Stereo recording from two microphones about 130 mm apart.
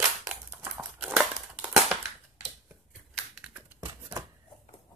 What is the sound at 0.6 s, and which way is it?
Crumpling, 15° right (ahead or behind).